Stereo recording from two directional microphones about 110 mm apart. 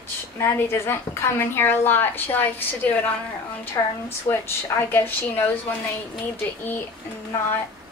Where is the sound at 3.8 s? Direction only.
35° left (ahead or behind).